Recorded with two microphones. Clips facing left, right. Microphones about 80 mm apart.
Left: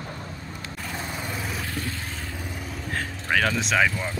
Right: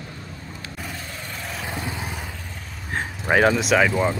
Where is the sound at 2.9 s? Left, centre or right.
Right.